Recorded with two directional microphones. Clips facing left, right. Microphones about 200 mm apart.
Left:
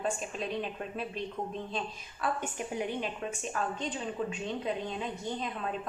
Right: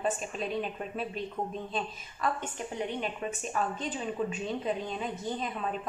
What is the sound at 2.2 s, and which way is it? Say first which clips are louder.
Speech: right 1 dB; 5° left (ahead or behind).